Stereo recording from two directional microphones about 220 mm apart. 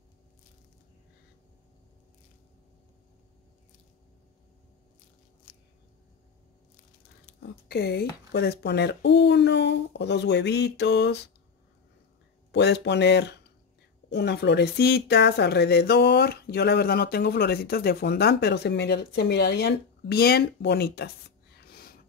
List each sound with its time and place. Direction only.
7.3 s speech: 45° left (ahead or behind)
12.4 s speech: 50° left (ahead or behind)
21.5 s snort: 45° left (ahead or behind)